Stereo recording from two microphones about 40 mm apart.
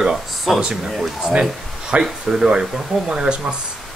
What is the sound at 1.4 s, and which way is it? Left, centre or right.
Speech, centre.